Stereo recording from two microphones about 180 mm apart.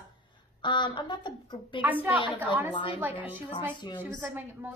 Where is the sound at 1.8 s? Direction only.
10° right (ahead or behind).